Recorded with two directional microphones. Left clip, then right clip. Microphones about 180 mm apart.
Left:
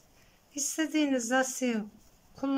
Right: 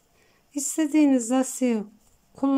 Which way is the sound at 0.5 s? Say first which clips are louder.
Right 7 dB; 25° right (ahead or behind).